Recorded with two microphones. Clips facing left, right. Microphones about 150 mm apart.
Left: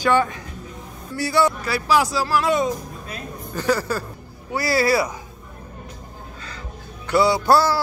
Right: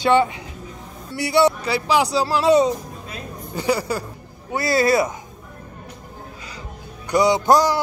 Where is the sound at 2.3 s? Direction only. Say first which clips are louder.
Right 5 dB; 30° right (ahead or behind).